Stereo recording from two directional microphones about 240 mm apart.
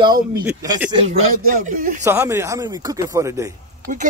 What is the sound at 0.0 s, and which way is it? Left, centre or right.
Speech, centre.